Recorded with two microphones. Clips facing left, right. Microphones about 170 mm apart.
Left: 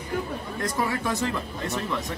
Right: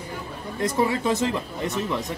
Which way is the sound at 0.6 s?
25° right (ahead or behind).